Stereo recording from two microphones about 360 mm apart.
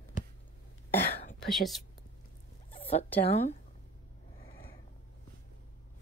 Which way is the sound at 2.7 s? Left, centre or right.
Centre.